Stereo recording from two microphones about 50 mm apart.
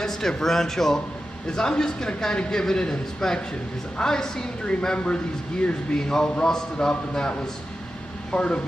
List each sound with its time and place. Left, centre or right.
0.0 s speech: centre